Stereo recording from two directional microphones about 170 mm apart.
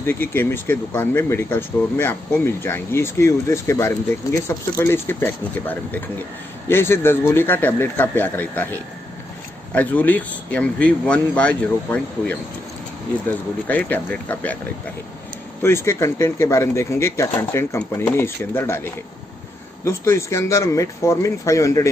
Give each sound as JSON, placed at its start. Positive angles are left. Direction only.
{"t": 0.0, "sound": "speech", "side_deg": 10}
{"t": 9.8, "sound": "speech", "side_deg": 10}
{"t": 15.6, "sound": "speech", "side_deg": 15}